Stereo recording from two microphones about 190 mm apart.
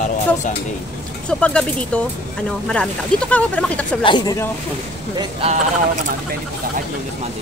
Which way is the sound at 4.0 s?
25° left (ahead or behind).